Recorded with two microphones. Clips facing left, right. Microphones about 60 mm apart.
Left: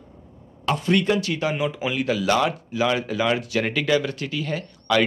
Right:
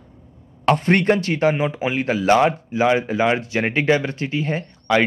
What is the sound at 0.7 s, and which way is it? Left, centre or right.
Speech, right.